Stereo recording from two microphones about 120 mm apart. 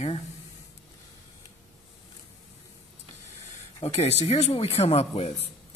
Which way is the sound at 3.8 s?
60° left (ahead or behind).